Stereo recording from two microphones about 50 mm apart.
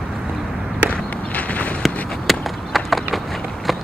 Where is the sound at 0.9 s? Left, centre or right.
Left.